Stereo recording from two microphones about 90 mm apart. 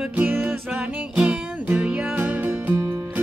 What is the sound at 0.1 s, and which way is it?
Music, 20° right (ahead or behind).